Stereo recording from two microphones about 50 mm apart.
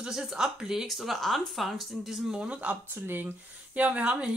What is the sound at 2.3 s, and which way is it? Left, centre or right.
Speech, centre.